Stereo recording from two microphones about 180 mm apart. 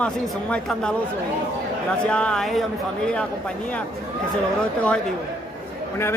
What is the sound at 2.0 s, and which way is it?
Speech, 5° left (ahead or behind).